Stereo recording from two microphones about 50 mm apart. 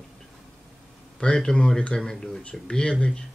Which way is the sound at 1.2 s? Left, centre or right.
Centre.